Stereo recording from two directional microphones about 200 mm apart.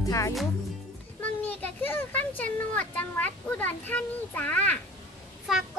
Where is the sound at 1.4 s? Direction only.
10° left (ahead or behind).